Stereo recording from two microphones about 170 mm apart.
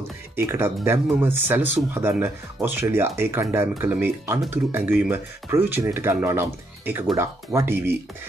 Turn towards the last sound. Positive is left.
turn(degrees=-15)  # may be behind; listen again after turning